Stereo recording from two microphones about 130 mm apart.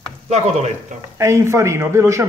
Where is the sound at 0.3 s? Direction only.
55° right (ahead or behind).